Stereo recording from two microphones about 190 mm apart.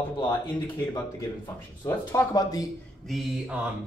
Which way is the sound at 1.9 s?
20° left (ahead or behind).